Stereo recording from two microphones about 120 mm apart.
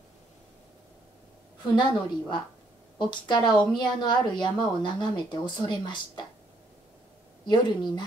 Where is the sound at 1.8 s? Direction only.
40° left (ahead or behind).